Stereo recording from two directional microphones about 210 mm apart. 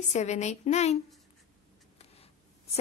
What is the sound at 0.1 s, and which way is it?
Speech, 35° left (ahead or behind).